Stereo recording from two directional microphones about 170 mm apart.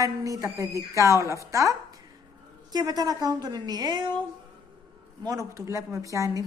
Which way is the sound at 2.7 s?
25° right (ahead or behind).